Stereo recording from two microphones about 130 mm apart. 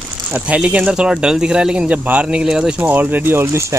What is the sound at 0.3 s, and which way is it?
Speech, 10° right (ahead or behind).